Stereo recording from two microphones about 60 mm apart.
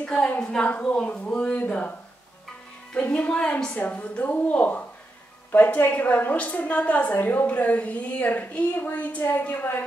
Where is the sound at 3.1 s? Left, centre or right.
Centre.